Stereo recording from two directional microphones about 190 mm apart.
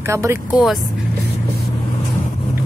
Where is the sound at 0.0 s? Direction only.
15° right (ahead or behind).